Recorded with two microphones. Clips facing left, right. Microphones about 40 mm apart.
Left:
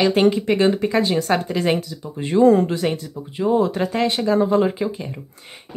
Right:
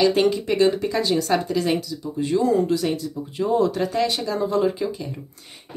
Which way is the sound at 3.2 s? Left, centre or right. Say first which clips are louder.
Left 2 dB; centre.